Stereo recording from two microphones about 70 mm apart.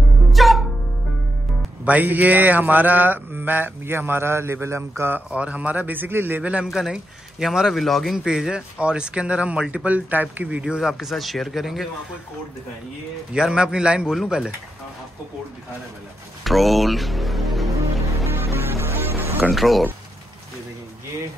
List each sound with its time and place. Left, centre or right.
0.3 s music: centre
1.9 s mantra: right
5.3 s mantra: centre
6.7 s a man's voice: centre
8.3 s speech: centre
13.3 s speech: centre
16.4 s music: centre
18.1 s music: right
19.5 s a man's voice: centre